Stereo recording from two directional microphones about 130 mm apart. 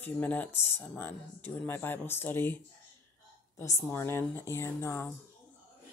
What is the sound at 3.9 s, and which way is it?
Speech, 20° left (ahead or behind).